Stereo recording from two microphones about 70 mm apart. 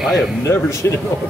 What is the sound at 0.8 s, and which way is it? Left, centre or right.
Speech, left.